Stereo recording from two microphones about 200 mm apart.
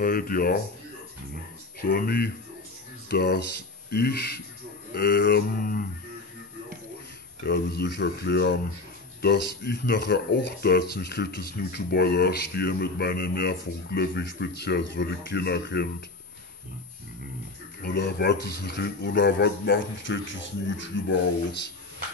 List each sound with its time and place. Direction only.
0.0 s speech: 45° left (ahead or behind)
1.8 s speech: 50° left (ahead or behind)
7.4 s speech: 55° left (ahead or behind)
17.8 s speech: 55° left (ahead or behind)